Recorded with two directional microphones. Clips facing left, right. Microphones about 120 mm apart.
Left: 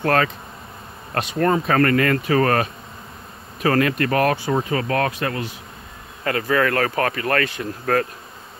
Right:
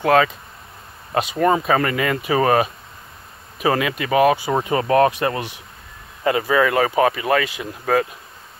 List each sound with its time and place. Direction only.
0.0 s speech: 10° right (ahead or behind)
4.6 s speech: 25° right (ahead or behind)
6.2 s speech: 15° right (ahead or behind)